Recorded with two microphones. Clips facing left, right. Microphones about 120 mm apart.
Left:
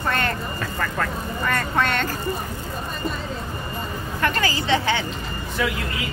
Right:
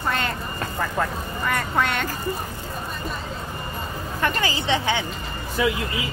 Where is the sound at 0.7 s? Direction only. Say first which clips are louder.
Right 2 dB; 15° right (ahead or behind).